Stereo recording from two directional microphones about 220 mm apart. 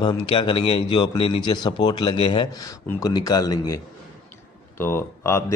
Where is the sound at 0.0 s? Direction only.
20° left (ahead or behind).